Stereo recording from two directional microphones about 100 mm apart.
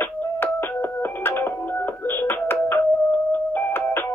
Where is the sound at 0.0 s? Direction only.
20° left (ahead or behind).